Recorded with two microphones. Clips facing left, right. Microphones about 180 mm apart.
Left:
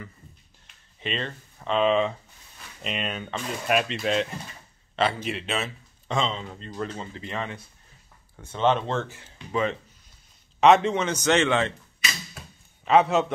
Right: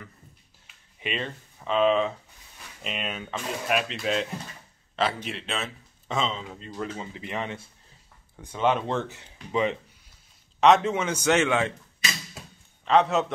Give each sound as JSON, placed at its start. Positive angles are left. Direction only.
{"t": 0.7, "sound": "a sound", "side_deg": -10}
{"t": 2.8, "sound": "a man's voice", "side_deg": 0}
{"t": 10.6, "sound": "speech", "side_deg": 0}
{"t": 12.8, "sound": "a man's voice", "side_deg": 5}